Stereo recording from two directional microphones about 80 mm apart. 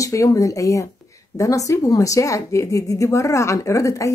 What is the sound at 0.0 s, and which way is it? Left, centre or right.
A woman's voice, left.